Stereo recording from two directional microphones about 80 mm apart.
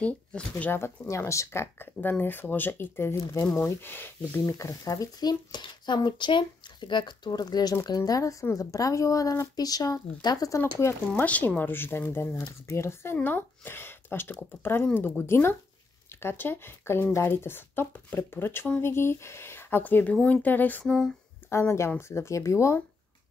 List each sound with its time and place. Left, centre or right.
0.0 s speech: centre
0.7 s a woman's voice: left
4.5 s speech: left
5.6 s speech: left
10.6 s a woman's voice: left
11.2 s a woman's voice: centre
21.5 s a woman's voice: left